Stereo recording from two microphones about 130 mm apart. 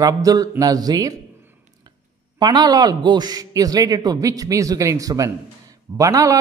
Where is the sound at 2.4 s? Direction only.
30° right (ahead or behind).